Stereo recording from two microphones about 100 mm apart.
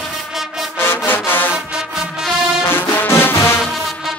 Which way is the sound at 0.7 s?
25° left (ahead or behind).